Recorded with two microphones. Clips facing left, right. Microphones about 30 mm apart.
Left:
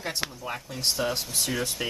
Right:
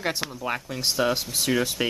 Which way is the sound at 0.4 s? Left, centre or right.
Centre.